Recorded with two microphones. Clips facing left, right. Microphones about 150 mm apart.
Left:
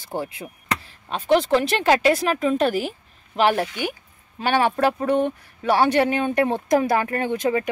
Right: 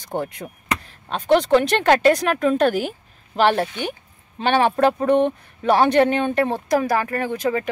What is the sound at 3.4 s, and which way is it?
Speech, 30° right (ahead or behind).